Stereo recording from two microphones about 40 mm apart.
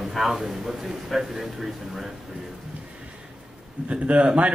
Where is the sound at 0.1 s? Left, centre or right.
Centre.